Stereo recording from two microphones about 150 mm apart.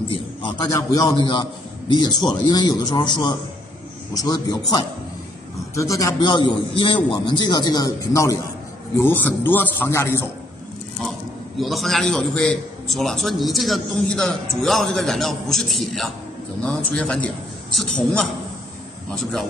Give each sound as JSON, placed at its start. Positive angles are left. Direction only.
{"t": 0.7, "sound": "a man's voice", "side_deg": 25}
{"t": 11.1, "sound": "a man's voice", "side_deg": 0}